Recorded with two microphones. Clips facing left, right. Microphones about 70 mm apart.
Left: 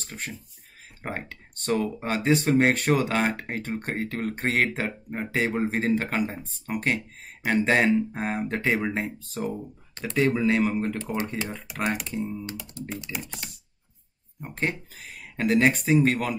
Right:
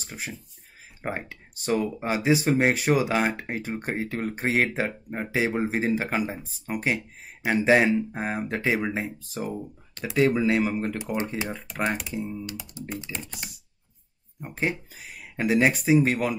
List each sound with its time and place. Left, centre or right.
0.0 s speech: centre
12.8 s speech: right
13.1 s speech: centre
14.4 s speech: centre